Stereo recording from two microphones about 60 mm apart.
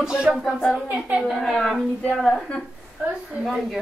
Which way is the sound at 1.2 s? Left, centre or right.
Centre.